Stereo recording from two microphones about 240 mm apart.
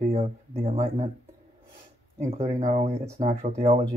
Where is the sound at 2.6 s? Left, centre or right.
Right.